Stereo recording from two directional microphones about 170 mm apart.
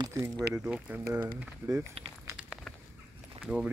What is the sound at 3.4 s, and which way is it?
Speech, 10° right (ahead or behind).